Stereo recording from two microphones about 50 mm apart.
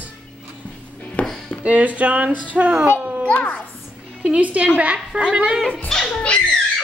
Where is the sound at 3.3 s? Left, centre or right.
Left.